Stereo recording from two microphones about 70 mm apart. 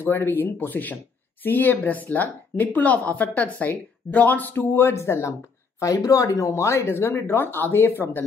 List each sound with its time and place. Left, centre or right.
0.0 s speech: left